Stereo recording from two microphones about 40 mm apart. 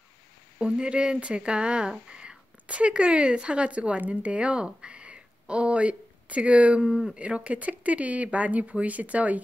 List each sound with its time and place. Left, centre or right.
0.6 s a woman's voice: right